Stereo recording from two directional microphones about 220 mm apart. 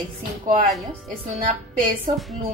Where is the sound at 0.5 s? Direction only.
35° right (ahead or behind).